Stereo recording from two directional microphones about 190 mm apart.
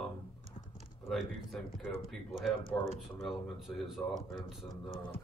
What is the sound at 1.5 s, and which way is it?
Speech, centre (ahead or behind).